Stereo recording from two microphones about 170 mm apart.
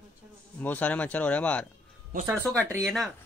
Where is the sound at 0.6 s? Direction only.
10° left (ahead or behind).